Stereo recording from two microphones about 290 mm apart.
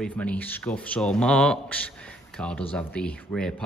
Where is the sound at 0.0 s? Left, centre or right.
Centre.